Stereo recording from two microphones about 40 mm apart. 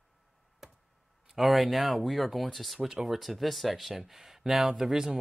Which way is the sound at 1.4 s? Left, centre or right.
Centre.